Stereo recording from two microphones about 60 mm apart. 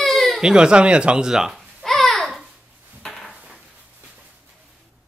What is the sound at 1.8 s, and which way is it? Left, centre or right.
Babbling, centre.